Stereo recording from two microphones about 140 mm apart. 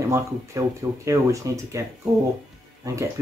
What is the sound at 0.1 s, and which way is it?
Speech, 20° right (ahead or behind).